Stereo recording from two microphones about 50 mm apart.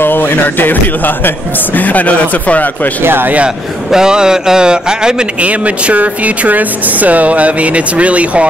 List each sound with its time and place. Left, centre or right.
0.0 s a man's voice: left
3.0 s speech: right
3.9 s speech: centre
5.4 s speech: right